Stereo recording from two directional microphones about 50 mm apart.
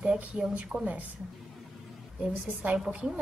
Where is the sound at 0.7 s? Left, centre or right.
Right.